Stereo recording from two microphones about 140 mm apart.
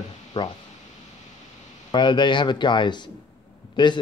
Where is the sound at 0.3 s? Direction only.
25° left (ahead or behind).